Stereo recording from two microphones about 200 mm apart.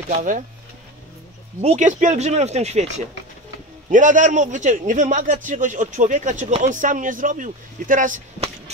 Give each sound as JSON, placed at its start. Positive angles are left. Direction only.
{"t": 0.1, "sound": "a man's voice", "side_deg": -40}
{"t": 1.6, "sound": "a man's voice", "side_deg": -35}
{"t": 3.9, "sound": "a man's voice", "side_deg": -40}